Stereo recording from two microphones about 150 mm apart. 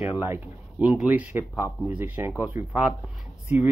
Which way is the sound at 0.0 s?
10° right (ahead or behind).